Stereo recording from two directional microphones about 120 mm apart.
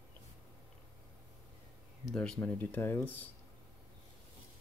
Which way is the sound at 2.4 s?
15° left (ahead or behind).